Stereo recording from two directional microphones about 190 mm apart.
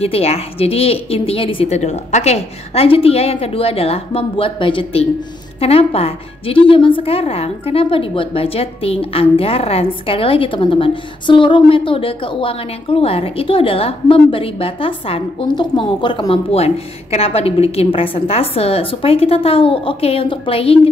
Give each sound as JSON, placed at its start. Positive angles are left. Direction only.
{"t": 0.0, "sound": "a woman's voice", "side_deg": 30}